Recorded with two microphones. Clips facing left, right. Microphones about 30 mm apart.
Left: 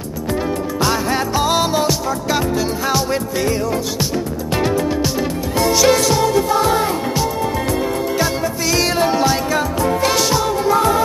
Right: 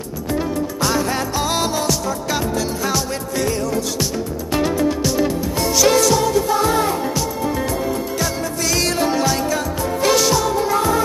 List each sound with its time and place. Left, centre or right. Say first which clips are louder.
0.3 s music: left 1 dB; centre
8.6 s music: left 2 dB; centre